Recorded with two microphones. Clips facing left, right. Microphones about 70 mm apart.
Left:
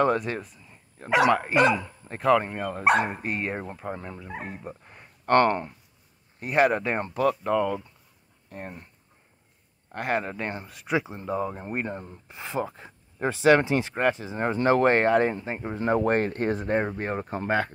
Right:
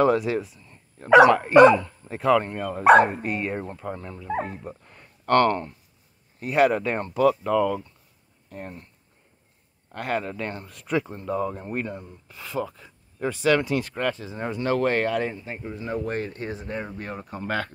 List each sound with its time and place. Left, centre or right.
0.0 s speech: centre
0.7 s speech: centre
2.3 s speech: centre
3.2 s speech: centre
3.8 s speech: left
4.6 s a sound: centre
6.4 s speech: centre
9.8 s speech: centre; by 14.4 s left
14.4 s speech: left
17.5 s speech: left